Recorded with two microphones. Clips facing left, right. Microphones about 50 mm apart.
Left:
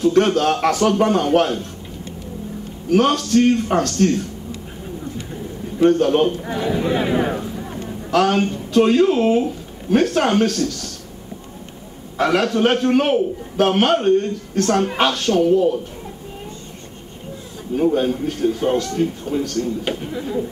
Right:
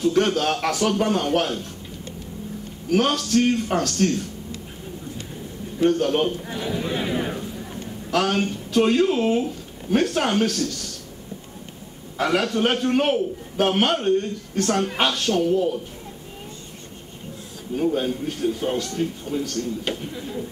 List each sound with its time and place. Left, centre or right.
0.0 s a man's voice: centre
2.9 s a man's voice: centre
5.8 s a man's voice: centre
7.8 s speech: centre
12.2 s a man's voice: centre
18.2 s a man's voice: centre
19.6 s a man's voice: centre